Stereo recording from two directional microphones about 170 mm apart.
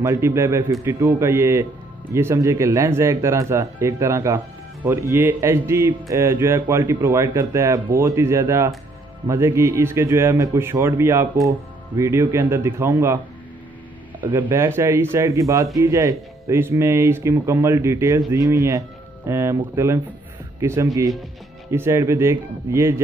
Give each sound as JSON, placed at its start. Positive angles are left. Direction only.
{"t": 0.0, "sound": "speech", "side_deg": -15}
{"t": 14.2, "sound": "speech", "side_deg": -10}